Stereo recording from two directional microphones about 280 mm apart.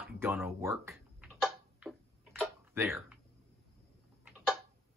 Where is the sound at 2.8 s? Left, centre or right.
Centre.